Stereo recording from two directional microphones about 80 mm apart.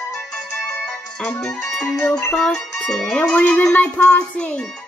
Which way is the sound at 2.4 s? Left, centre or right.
Centre.